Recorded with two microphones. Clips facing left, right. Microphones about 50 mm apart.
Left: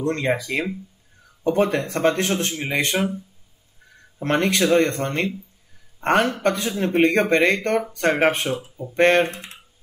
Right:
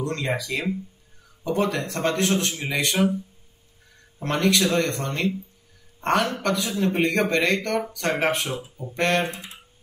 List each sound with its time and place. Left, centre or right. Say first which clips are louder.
0.0 s speech: left 4 dB; left
4.2 s speech: left 2 dB; left